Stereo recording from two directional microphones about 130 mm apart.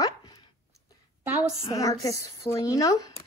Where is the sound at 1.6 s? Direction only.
25° left (ahead or behind).